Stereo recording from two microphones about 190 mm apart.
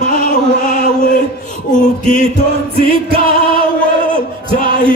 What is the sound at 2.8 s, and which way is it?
Music, 30° right (ahead or behind).